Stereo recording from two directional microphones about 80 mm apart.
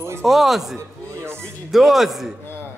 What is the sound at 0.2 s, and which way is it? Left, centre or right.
Speech, centre.